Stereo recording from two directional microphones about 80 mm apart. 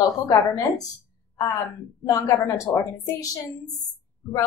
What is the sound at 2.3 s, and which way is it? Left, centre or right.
Speech, left.